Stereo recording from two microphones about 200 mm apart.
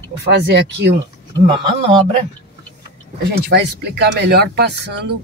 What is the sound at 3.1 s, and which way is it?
Speech, 55° right (ahead or behind).